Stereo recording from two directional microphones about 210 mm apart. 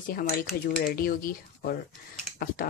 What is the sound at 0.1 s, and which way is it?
Speech, 45° left (ahead or behind).